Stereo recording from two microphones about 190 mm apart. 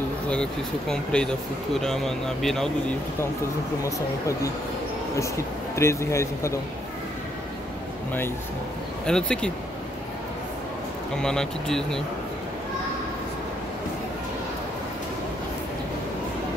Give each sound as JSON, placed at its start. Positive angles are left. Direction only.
{"t": 0.3, "sound": "speech", "side_deg": 5}
{"t": 3.8, "sound": "a man's voice", "side_deg": 15}
{"t": 5.8, "sound": "a man's voice", "side_deg": 15}
{"t": 9.0, "sound": "speech", "side_deg": 5}
{"t": 11.1, "sound": "speech", "side_deg": 5}